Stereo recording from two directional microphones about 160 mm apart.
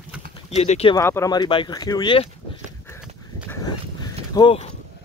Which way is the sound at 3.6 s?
25° left (ahead or behind).